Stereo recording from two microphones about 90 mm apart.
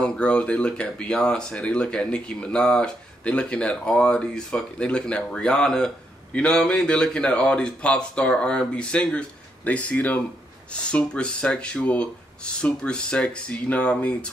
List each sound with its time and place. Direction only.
0.0 s speech: 10° left (ahead or behind)